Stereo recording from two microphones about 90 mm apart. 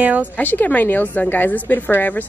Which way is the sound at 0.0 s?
15° right (ahead or behind).